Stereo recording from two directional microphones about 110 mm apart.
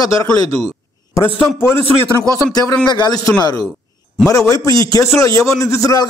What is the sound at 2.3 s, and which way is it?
A man's voice, 35° left (ahead or behind).